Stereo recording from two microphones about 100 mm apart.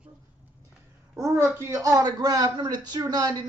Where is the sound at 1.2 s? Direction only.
30° right (ahead or behind).